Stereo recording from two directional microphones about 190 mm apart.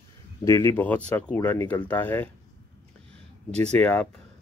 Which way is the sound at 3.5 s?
35° right (ahead or behind).